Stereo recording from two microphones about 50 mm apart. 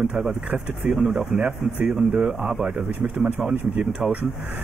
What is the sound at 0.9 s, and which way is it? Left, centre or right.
Speech, centre.